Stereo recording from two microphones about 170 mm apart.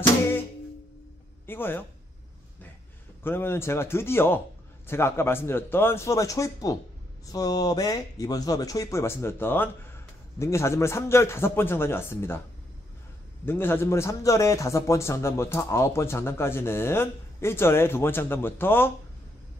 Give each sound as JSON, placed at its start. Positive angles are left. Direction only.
{"t": 1.4, "sound": "a man's voice", "side_deg": 15}
{"t": 3.3, "sound": "a man's voice", "side_deg": 15}
{"t": 13.5, "sound": "a man's voice", "side_deg": 15}